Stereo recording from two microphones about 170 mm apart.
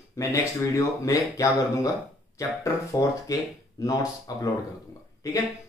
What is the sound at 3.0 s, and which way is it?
A man's voice, 15° left (ahead or behind).